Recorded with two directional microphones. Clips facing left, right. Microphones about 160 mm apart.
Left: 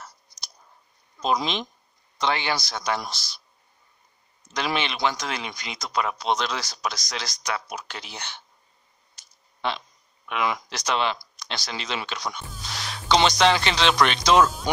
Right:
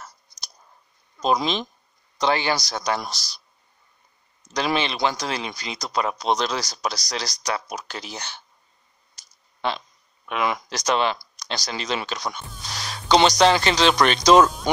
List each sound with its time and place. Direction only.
1.2 s speech: 40° right (ahead or behind)
4.7 s speech: 35° right (ahead or behind)
9.1 s a sound: 40° right (ahead or behind)
11.3 s speech: 40° right (ahead or behind)